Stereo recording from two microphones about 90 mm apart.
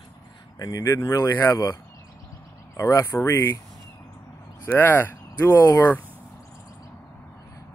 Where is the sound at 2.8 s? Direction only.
35° left (ahead or behind).